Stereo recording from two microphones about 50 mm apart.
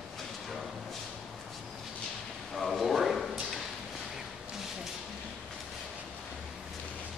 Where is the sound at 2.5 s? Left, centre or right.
Centre.